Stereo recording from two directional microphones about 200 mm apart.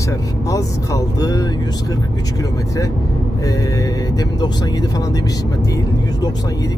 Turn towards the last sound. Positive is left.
turn(degrees=20)  # may be behind; listen again after turning